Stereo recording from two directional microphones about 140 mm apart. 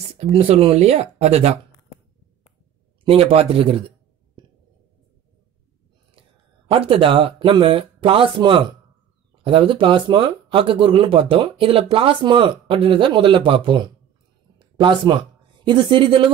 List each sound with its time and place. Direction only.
0.1 s speech: 45° right (ahead or behind)
3.1 s speech: 45° right (ahead or behind)
6.7 s speech: 40° right (ahead or behind)